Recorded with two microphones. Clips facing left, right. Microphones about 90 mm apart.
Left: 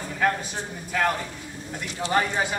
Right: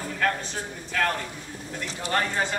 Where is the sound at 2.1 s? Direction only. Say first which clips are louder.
Left 2 dB; 10° left (ahead or behind).